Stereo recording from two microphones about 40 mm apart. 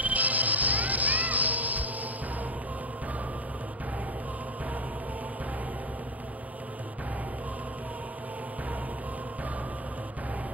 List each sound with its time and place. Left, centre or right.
0.0 s music: right